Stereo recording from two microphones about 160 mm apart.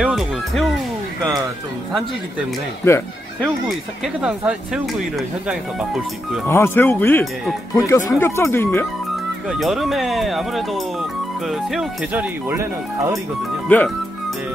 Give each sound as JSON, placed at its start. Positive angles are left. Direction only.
{"t": 0.0, "sound": "music", "side_deg": 0}
{"t": 2.8, "sound": "speech", "side_deg": 15}
{"t": 3.6, "sound": "speech", "side_deg": -5}
{"t": 6.4, "sound": "speech", "side_deg": 15}
{"t": 9.5, "sound": "speech", "side_deg": 0}
{"t": 13.7, "sound": "speech", "side_deg": 10}